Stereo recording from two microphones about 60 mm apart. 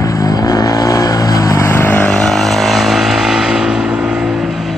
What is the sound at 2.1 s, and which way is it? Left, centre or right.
Vehicle, centre.